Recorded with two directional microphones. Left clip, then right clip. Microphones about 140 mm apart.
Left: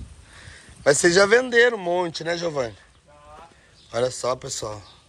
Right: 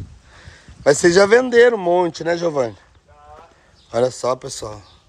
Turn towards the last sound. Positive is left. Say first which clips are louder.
# right 5 dB
turn(degrees=-35)  # may be behind; listen again after turning